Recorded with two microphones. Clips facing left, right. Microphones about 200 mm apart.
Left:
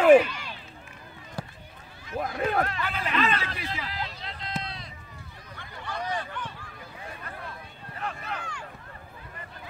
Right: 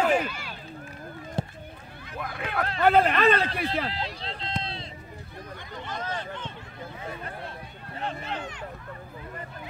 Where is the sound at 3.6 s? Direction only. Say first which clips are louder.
Right 6 dB; 35° right (ahead or behind).